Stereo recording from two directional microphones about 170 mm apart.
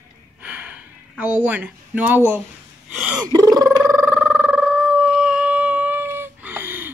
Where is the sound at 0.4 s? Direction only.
10° right (ahead or behind).